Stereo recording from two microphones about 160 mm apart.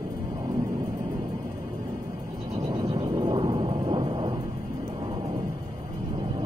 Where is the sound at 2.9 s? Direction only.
30° right (ahead or behind).